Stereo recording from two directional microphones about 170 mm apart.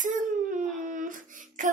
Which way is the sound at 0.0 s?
50° right (ahead or behind).